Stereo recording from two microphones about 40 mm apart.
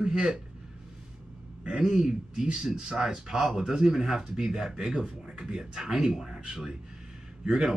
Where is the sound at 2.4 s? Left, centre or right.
Right.